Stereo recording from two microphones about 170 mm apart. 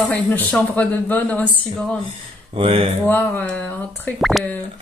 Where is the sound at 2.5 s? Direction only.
35° right (ahead or behind).